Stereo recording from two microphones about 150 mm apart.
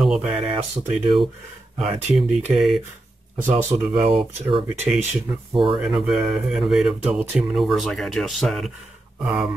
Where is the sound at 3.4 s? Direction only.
55° right (ahead or behind).